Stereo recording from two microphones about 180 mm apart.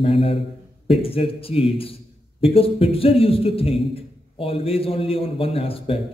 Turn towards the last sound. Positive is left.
turn(degrees=30)  # may be behind; listen again after turning